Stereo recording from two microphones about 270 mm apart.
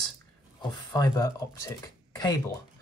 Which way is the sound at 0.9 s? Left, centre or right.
Centre.